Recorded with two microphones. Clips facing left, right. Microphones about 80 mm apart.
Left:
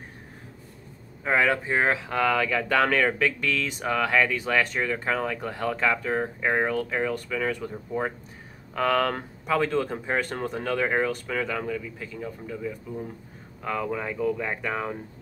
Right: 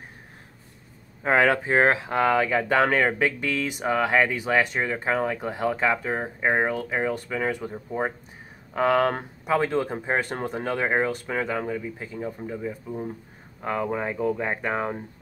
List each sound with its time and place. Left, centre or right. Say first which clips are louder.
1.2 s speech: right 3 dB; right